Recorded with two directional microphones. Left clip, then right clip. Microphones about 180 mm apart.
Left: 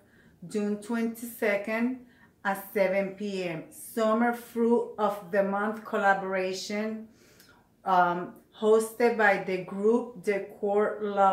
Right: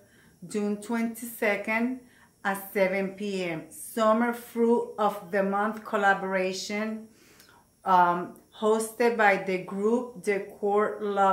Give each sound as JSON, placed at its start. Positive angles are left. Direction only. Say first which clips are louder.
{"t": 0.5, "sound": "a woman's voice", "louder": "right 1 dB", "side_deg": -35}
{"t": 7.8, "sound": "a woman's voice", "louder": "right 2 dB", "side_deg": -35}